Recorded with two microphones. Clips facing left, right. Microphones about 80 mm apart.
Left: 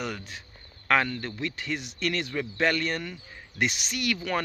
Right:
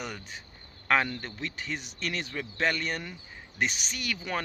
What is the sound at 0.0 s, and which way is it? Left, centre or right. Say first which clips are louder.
Speech: left 4 dB; centre.